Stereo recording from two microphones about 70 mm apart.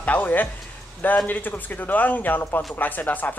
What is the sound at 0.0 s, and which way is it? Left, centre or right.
Speech, left.